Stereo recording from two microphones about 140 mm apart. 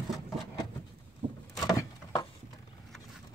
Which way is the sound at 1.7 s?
25° left (ahead or behind).